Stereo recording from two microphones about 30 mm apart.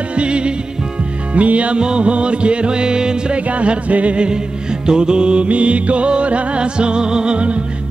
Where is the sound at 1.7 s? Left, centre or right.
Right.